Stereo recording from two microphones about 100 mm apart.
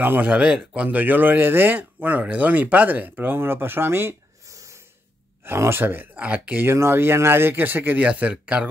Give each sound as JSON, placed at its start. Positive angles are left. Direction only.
{"t": 0.0, "sound": "speech", "side_deg": -15}